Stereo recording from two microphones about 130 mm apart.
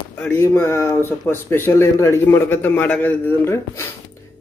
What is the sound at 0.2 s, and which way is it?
Speech, 15° left (ahead or behind).